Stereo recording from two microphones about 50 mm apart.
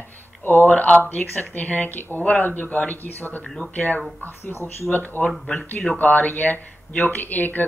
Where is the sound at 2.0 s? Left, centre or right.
Left.